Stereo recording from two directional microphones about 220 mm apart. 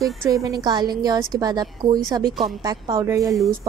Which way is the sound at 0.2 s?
15° right (ahead or behind).